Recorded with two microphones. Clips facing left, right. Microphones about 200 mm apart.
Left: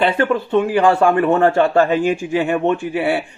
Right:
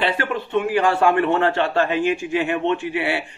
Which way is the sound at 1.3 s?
45° left (ahead or behind).